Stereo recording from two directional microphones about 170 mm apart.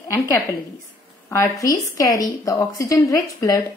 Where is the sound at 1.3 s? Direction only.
20° left (ahead or behind).